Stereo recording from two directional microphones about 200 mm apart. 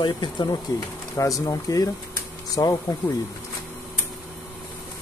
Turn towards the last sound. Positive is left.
turn(degrees=15)  # may be behind; listen again after turning